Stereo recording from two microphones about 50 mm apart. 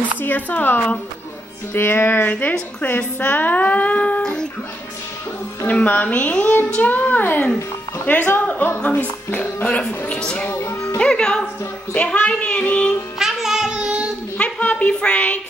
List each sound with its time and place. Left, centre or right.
0.2 s speech: left
1.7 s music: left
2.8 s speech: left
4.2 s speech: centre
5.7 s speech: left
8.0 s music: left
8.9 s speech: left
9.6 s speech: left
10.5 s speech: left
11.0 s speech: centre
13.2 s child singing: centre
14.4 s a sound: left